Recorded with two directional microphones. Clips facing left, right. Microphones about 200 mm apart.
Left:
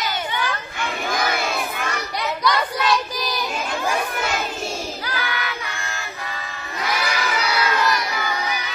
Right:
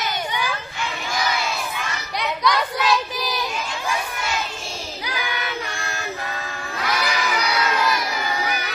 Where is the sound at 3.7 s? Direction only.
55° left (ahead or behind).